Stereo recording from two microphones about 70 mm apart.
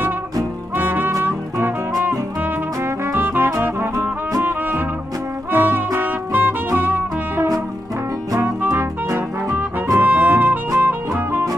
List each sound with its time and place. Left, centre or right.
0.7 s music: right
3.1 s brass instrument: right
5.9 s music: right
10.0 s music: right